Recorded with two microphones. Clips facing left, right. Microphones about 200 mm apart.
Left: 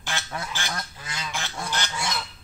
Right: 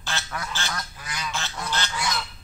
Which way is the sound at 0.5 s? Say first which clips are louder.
Even; 15° left (ahead or behind).